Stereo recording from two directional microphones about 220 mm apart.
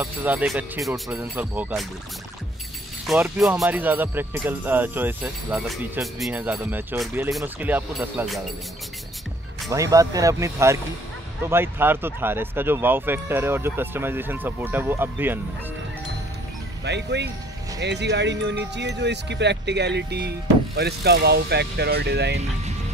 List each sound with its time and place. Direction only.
0.0 s speech: 5° right (ahead or behind)
3.3 s speech: centre (ahead or behind)
9.7 s speech: 15° right (ahead or behind)
16.8 s speech: 50° right (ahead or behind)